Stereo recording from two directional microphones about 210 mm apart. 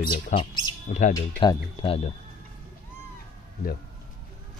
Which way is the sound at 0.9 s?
35° left (ahead or behind).